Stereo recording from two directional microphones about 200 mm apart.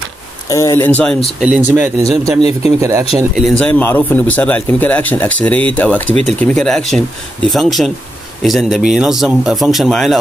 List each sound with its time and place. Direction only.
0.5 s speech: 15° left (ahead or behind)
1.8 s speech: 15° right (ahead or behind)
3.3 s a man's voice: 5° left (ahead or behind)